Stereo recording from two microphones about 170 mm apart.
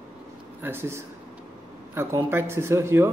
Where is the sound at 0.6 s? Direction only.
15° right (ahead or behind).